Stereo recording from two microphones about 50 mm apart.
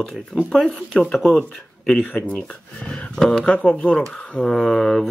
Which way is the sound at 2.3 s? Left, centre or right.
Centre.